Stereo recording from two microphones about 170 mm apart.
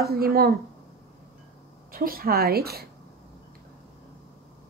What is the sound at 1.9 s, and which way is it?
A woman's voice, 60° right (ahead or behind).